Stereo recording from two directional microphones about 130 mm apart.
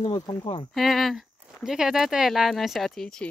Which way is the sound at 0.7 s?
Centre (ahead or behind).